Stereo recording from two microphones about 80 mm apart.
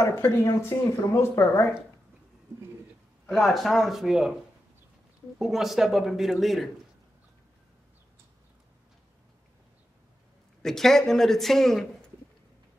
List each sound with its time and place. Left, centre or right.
0.0 s speech: left
3.3 s speech: centre
5.4 s speech: centre
10.6 s speech: centre